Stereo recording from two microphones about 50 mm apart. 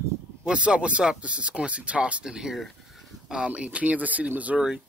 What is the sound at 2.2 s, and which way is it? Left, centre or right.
Speech, centre.